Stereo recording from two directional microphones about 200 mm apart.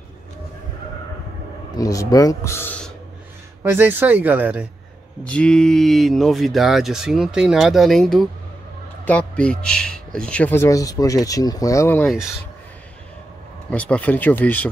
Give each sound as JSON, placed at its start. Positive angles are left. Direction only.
{"t": 1.8, "sound": "speech", "side_deg": 15}
{"t": 3.6, "sound": "speech", "side_deg": -10}
{"t": 5.2, "sound": "speech", "side_deg": 5}
{"t": 13.7, "sound": "speech", "side_deg": 5}